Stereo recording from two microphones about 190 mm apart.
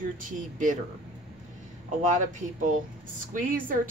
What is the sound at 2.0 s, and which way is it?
Speech, 40° right (ahead or behind).